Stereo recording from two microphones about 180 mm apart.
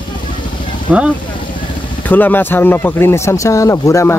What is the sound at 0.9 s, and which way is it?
Speech, 5° right (ahead or behind).